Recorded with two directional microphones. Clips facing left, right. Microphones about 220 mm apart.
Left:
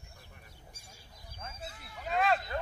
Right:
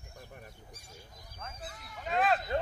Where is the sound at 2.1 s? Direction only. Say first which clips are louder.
Right 1 dB; centre (ahead or behind).